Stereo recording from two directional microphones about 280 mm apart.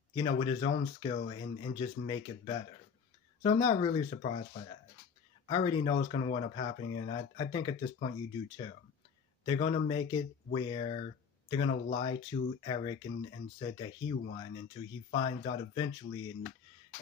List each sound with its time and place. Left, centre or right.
0.1 s speech: centre
5.5 s speech: centre